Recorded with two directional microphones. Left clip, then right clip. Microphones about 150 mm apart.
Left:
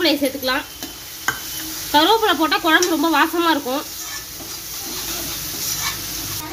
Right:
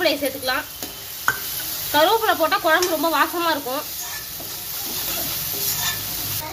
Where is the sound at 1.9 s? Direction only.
90° left.